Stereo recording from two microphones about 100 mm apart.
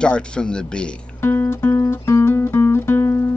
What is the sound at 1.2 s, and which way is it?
Music, 25° left (ahead or behind).